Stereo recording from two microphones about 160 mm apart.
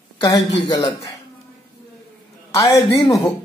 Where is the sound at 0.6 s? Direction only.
25° left (ahead or behind).